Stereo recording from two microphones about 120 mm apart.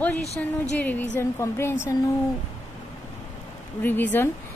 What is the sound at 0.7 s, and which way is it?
A woman's voice, 15° left (ahead or behind).